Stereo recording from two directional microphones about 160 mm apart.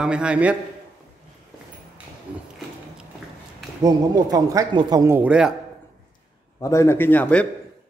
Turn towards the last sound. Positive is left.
turn(degrees=10)  # may be behind; listen again after turning